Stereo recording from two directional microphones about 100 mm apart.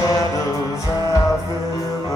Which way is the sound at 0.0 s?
35° left (ahead or behind).